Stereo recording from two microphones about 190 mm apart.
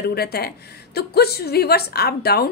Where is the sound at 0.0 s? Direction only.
55° left (ahead or behind).